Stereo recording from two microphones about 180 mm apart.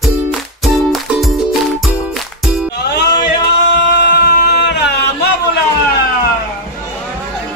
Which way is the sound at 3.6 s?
70° left (ahead or behind).